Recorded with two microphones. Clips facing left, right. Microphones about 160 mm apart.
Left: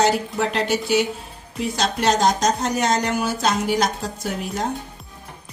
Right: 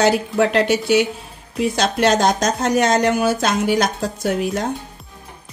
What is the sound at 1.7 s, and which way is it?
Speech, 80° right.